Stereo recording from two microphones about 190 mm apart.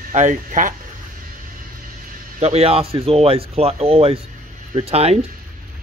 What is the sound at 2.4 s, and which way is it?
Speech, 35° right (ahead or behind).